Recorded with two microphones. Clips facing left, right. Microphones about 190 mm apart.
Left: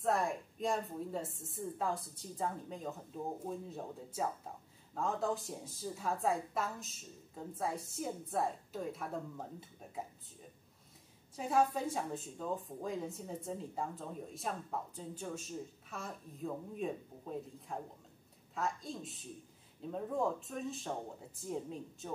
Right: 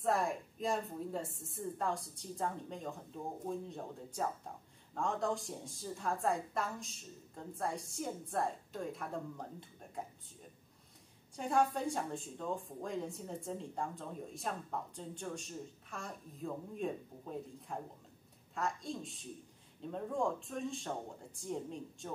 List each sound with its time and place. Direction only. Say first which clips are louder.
0.0 s a woman's voice: even; centre (ahead or behind)